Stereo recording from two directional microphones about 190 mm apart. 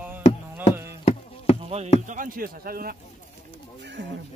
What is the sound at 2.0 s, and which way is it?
Speech, 45° right (ahead or behind).